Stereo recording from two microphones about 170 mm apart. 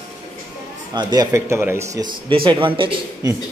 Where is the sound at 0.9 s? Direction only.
25° right (ahead or behind).